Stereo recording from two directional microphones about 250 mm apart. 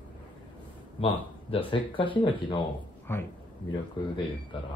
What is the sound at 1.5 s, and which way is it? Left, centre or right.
Speech, left.